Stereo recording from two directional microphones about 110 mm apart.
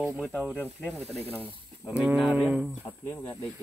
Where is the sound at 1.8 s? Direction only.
15° right (ahead or behind).